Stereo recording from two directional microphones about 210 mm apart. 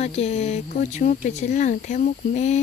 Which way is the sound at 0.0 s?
30° left (ahead or behind).